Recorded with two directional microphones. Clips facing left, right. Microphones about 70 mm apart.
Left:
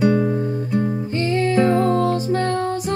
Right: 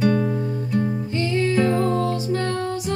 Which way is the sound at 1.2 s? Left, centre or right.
Left.